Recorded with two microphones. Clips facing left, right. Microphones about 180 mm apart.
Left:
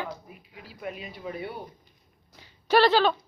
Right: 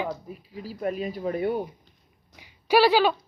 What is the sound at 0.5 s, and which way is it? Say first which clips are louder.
Speech: right 8 dB; 40° right (ahead or behind).